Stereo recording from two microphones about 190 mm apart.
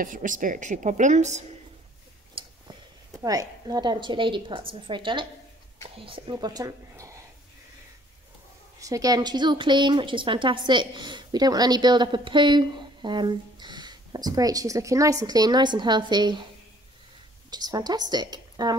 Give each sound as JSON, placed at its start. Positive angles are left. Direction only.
{"t": 0.0, "sound": "a woman's voice", "side_deg": -45}
{"t": 3.1, "sound": "a woman's voice", "side_deg": -20}
{"t": 8.7, "sound": "a woman's voice", "side_deg": -15}
{"t": 17.5, "sound": "a woman's voice", "side_deg": -20}